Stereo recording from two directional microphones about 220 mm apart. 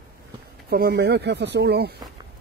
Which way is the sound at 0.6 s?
45° right (ahead or behind).